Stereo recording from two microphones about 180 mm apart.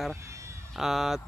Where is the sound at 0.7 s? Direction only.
Centre (ahead or behind).